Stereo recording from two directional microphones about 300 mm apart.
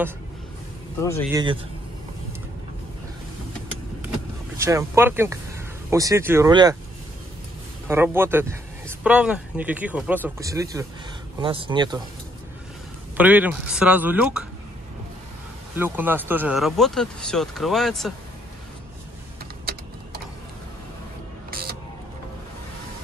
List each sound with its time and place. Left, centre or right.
1.3 s speech: centre
4.6 s speech: centre
7.9 s speech: centre
13.2 s speech: centre
15.7 s speech: centre
21.5 s a sound: right